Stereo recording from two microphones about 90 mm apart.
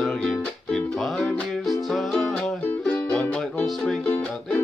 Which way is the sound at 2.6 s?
15° left (ahead or behind).